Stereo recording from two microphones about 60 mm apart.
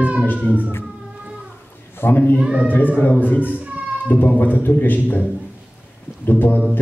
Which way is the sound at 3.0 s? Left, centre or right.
Left.